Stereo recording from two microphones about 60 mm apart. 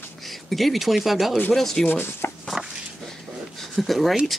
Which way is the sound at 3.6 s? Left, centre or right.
Centre.